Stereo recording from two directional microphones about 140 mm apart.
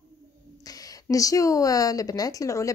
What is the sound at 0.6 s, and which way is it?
Speech, 25° left (ahead or behind).